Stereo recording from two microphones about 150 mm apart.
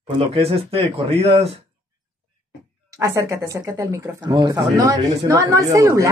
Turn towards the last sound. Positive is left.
turn(degrees=-20)  # may be behind; listen again after turning